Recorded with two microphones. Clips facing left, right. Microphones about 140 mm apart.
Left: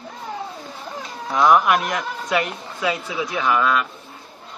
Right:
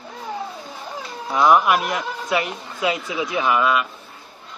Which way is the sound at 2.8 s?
15° right (ahead or behind).